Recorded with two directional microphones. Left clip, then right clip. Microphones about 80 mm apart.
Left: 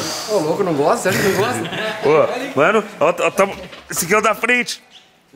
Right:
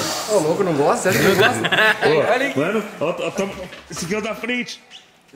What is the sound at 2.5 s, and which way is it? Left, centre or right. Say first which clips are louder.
Speech: left 7 dB; left.